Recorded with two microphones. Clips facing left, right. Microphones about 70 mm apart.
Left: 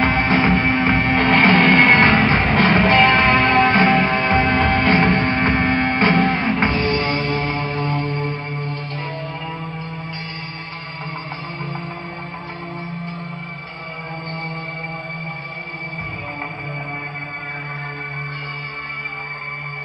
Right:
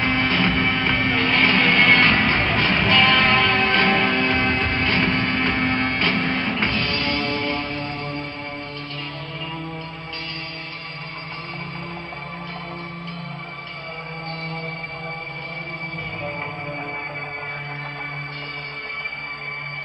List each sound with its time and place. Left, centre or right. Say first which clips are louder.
0.0 s music: left 4 dB; left
1.3 s music: left 6 dB; left
2.0 s music: left 4 dB; left
5.0 s hum: left 4 dB; left
5.4 s music: left 4 dB; left
6.7 s music: left 4 dB; left
7.5 s music: left 5 dB; left